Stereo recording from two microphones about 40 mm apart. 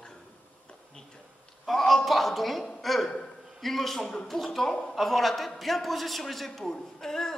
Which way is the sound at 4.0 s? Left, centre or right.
Left.